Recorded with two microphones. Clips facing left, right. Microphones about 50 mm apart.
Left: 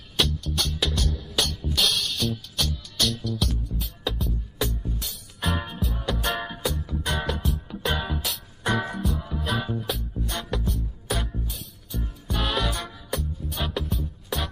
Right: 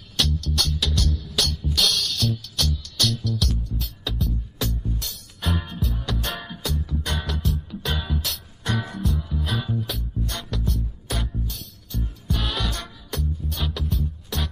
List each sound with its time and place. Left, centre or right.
0.1 s music: centre
1.5 s music: centre
6.4 s music: centre